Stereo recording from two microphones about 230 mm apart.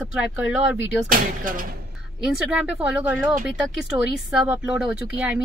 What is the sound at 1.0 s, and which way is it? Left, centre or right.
Speech, right.